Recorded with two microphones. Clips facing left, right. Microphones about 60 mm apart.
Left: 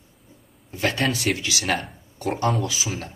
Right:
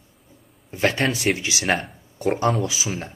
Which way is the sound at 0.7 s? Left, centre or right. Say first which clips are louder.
Right 2 dB; right.